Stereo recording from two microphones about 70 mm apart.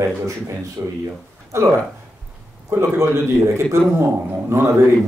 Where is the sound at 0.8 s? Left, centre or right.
Right.